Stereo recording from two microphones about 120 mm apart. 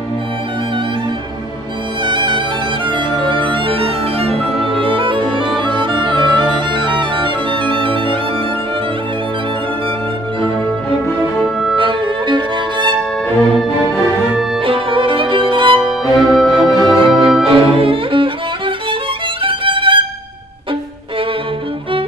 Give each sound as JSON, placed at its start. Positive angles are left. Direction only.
{"t": 2.0, "sound": "music", "side_deg": -40}
{"t": 11.7, "sound": "music", "side_deg": -45}
{"t": 14.6, "sound": "music", "side_deg": -50}
{"t": 15.8, "sound": "music", "side_deg": -5}
{"t": 17.5, "sound": "bowed string instrument", "side_deg": -50}
{"t": 19.4, "sound": "music", "side_deg": -45}